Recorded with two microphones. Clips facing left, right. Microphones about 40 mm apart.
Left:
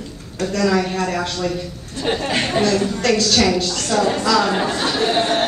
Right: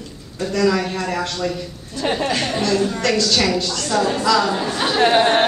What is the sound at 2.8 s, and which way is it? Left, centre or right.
A woman's voice, centre.